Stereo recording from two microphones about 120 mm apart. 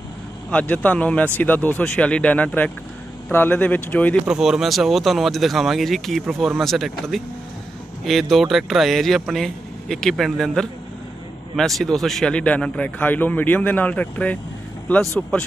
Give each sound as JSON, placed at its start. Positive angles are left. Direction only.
{"t": 0.5, "sound": "speech", "side_deg": 10}
{"t": 4.3, "sound": "speech", "side_deg": -5}